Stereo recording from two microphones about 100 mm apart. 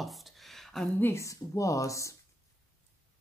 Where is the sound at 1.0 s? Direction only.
30° left (ahead or behind).